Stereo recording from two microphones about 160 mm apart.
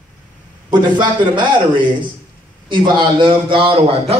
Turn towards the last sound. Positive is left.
turn(degrees=-35)  # may be behind; listen again after turning